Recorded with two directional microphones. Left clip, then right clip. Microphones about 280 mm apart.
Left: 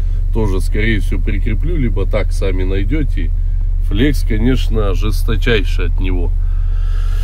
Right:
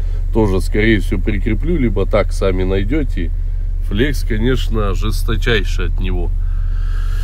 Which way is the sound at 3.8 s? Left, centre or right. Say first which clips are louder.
Left 1 dB; centre.